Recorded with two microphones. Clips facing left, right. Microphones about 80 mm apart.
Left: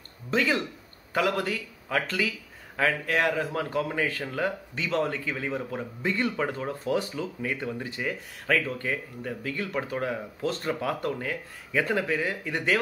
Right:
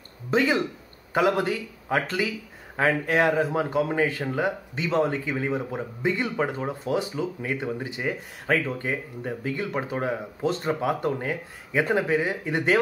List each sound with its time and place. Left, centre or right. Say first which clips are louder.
0.3 s speech: right 3 dB; right